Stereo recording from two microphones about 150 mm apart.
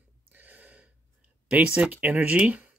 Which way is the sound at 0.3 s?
10° right (ahead or behind).